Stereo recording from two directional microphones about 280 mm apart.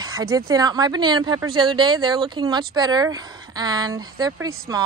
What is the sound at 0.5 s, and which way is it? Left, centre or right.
Speech, centre.